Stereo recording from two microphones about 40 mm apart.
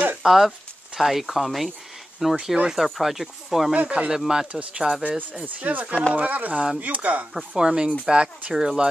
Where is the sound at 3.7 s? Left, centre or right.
Right.